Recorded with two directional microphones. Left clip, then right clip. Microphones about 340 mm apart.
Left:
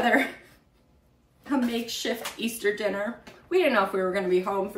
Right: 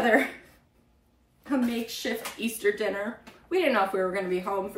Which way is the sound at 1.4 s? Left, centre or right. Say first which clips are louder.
Left 1 dB; centre.